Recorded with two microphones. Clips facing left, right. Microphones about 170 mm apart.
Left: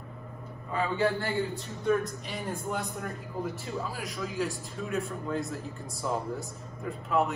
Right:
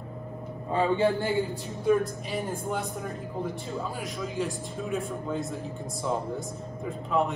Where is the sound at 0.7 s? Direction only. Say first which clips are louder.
Right 4 dB; 25° right (ahead or behind).